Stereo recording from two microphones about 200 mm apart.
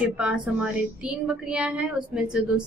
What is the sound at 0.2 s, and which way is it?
A woman's voice, 5° right (ahead or behind).